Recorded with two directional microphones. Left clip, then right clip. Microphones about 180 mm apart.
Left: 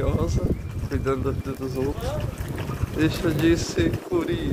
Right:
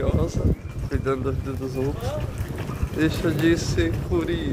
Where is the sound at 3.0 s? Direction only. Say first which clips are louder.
Even; 5° left (ahead or behind).